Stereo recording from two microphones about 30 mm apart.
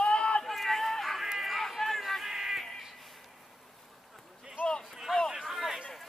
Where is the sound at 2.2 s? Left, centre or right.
Centre.